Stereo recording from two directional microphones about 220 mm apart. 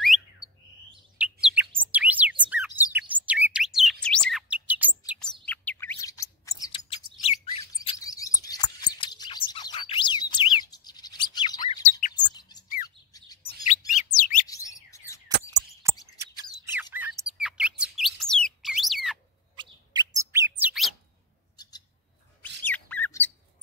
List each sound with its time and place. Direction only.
0.0 s bird: centre (ahead or behind)
1.1 s chirp: 5° right (ahead or behind)
2.4 s bird: 5° right (ahead or behind)
5.5 s chirp: 5° left (ahead or behind); by 7.6 s 25° left (ahead or behind)
7.6 s bird: 20° left (ahead or behind)
12.1 s chirp: 20° left (ahead or behind)
13.7 s chirp: 35° left (ahead or behind)
14.5 s bird: 15° left (ahead or behind)
16.2 s chirp: 10° right (ahead or behind)
17.3 s bird: 5° right (ahead or behind)
19.5 s bird: 20° right (ahead or behind); by 20.9 s 5° right (ahead or behind)
21.5 s bird: 20° left (ahead or behind)
22.7 s squawk: 5° left (ahead or behind)